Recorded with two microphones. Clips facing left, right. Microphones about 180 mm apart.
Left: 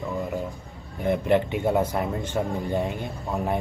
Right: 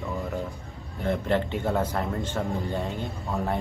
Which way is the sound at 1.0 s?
15° left (ahead or behind).